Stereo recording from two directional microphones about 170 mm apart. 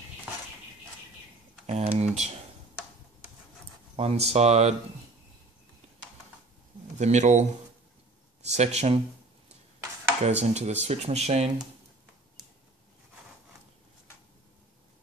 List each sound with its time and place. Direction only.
1.7 s speech: 40° right (ahead or behind)
3.9 s speech: 35° right (ahead or behind)
7.0 s speech: 40° right (ahead or behind)
8.5 s speech: 40° right (ahead or behind)
10.2 s speech: 40° right (ahead or behind)